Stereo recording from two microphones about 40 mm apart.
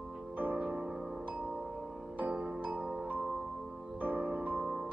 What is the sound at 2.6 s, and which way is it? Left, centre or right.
Music, right.